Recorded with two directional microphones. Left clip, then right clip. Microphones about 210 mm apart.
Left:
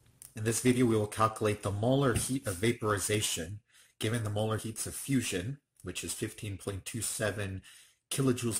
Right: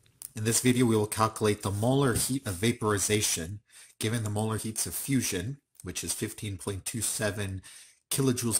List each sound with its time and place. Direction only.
0.3 s speech: 40° right (ahead or behind)